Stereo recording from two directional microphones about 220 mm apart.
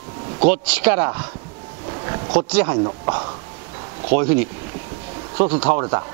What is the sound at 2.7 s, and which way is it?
Speech, 25° right (ahead or behind).